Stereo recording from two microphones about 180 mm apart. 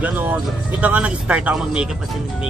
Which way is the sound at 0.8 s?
10° right (ahead or behind).